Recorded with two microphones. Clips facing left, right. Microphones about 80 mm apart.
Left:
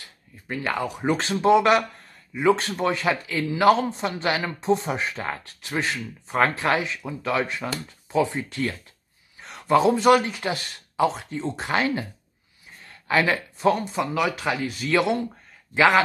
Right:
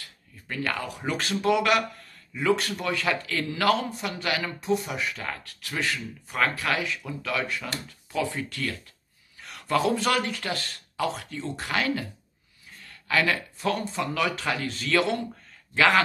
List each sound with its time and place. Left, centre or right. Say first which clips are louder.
0.0 s speech: left 1 dB; left